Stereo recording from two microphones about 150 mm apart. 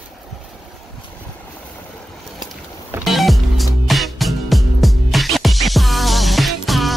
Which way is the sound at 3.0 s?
Centre (ahead or behind).